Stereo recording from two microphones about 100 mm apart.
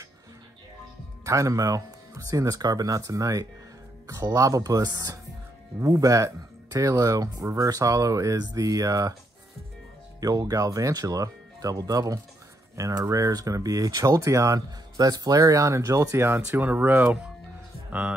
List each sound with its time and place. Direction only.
1.2 s speech: 35° right (ahead or behind)
10.2 s speech: 35° right (ahead or behind); by 18.1 s 15° right (ahead or behind)